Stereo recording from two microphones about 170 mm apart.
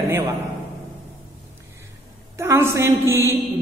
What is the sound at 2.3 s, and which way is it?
A man's voice, 15° right (ahead or behind).